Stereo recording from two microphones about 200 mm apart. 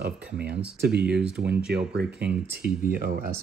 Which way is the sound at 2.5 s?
50° right (ahead or behind).